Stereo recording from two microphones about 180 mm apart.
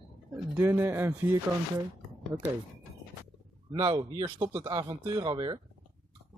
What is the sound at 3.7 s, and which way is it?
Speech, 25° right (ahead or behind).